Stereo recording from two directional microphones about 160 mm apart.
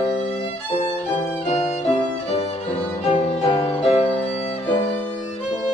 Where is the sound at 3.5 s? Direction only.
35° left (ahead or behind).